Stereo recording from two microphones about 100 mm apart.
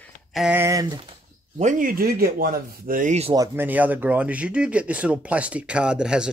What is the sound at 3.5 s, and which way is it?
Speech, 20° right (ahead or behind).